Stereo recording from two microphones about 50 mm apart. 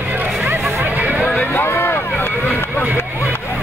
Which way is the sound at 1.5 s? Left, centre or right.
Left.